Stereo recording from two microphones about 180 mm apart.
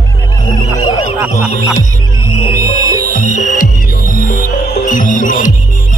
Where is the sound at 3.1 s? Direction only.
45° left (ahead or behind).